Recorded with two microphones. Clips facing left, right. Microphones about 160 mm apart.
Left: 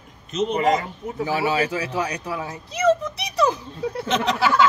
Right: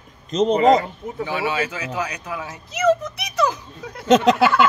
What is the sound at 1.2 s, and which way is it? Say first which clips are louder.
Speech: left 2 dB; 35° left (ahead or behind).